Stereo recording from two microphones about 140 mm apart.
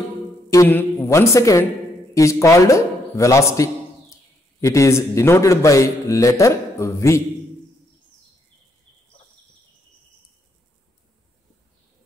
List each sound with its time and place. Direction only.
0.5 s a woman's voice: 20° left (ahead or behind)